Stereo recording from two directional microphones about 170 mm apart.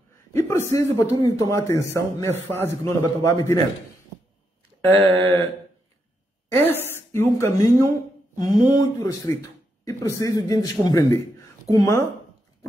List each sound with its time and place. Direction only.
0.3 s a man's voice: 15° left (ahead or behind)
4.8 s a man's voice: 10° left (ahead or behind)
6.5 s a man's voice: 10° left (ahead or behind)